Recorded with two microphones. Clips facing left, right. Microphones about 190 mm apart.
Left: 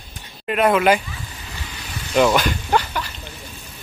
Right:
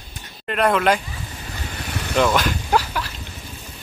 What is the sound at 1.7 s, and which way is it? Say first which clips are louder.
Vehicle: right 7 dB; 65° right (ahead or behind).